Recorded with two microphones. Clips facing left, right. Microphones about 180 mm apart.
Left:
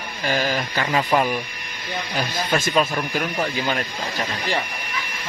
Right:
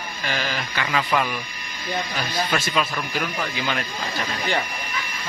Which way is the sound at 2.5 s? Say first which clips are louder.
Left 6 dB; 50° left (ahead or behind).